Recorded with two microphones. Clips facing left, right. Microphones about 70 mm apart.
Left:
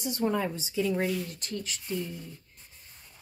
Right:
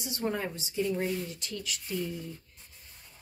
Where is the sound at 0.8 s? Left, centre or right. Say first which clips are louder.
Left 3 dB; left.